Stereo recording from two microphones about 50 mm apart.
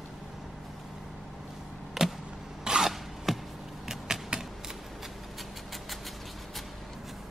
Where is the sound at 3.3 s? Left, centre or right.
Centre.